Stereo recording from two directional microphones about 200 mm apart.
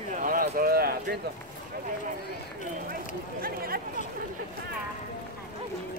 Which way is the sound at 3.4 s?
50° right (ahead or behind).